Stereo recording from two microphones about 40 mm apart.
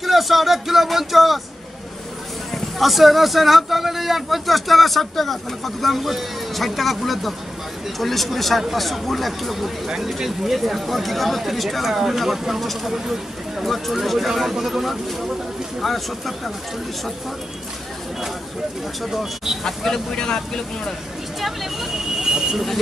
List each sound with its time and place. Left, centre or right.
0.0 s speech: centre
2.5 s speech: centre
13.7 s speech: centre
19.0 s speech: centre
19.6 s speech: centre
21.4 s speech: centre
22.2 s vehicle: centre